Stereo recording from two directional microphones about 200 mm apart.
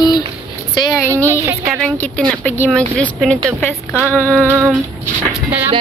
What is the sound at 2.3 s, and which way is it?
Speech, 10° left (ahead or behind).